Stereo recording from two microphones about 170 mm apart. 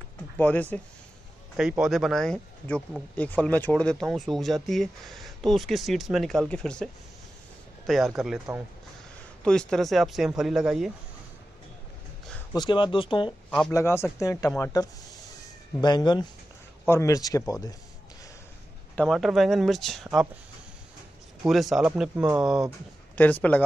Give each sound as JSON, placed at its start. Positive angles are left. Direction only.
{"t": 0.4, "sound": "speech", "side_deg": 10}
{"t": 1.6, "sound": "speech", "side_deg": -5}
{"t": 12.5, "sound": "speech", "side_deg": 30}
{"t": 13.7, "sound": "speech", "side_deg": 15}
{"t": 18.9, "sound": "speech", "side_deg": 0}
{"t": 21.4, "sound": "speech", "side_deg": 0}
{"t": 22.1, "sound": "speech", "side_deg": -15}
{"t": 22.4, "sound": "speech", "side_deg": -5}
{"t": 23.1, "sound": "speech", "side_deg": 10}